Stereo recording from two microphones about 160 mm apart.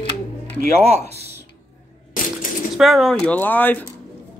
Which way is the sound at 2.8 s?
Centre (ahead or behind).